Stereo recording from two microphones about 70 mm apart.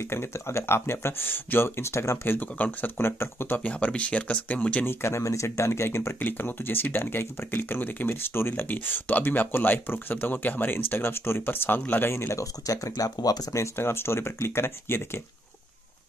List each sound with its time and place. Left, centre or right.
0.0 s speech: left; by 4.8 s centre
4.8 s speech: left
12.6 s speech: left
13.1 s speech: left
13.6 s speech: left